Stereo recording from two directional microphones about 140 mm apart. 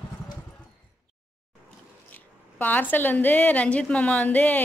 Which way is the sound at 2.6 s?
10° left (ahead or behind).